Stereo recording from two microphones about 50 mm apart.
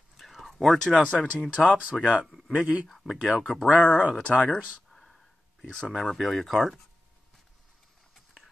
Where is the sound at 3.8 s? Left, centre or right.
Left.